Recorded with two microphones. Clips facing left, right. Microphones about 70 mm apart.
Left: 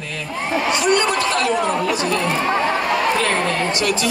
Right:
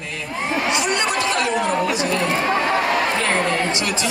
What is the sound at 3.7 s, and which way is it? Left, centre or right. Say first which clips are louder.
Speech: left 3 dB; right.